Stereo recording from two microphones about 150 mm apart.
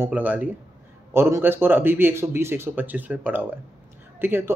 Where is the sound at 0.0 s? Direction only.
10° right (ahead or behind).